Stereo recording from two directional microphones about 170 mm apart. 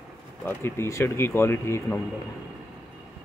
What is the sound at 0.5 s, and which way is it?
Speech, 15° left (ahead or behind).